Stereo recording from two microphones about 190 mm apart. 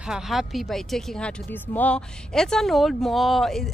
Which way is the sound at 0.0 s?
5° right (ahead or behind).